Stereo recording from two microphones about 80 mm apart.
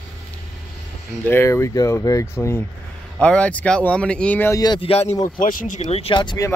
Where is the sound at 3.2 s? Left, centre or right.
Centre.